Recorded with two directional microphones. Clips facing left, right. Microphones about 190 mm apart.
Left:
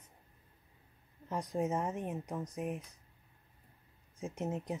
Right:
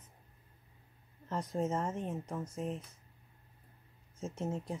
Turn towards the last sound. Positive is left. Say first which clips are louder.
# even
turn(degrees=20)  # may be behind; listen again after turning